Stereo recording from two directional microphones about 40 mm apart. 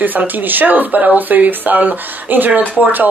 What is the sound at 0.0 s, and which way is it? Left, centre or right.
Speech, right.